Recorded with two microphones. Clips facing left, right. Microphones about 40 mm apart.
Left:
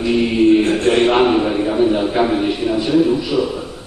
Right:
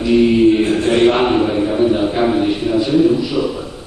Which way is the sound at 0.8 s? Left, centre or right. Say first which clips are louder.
Right 1 dB; centre.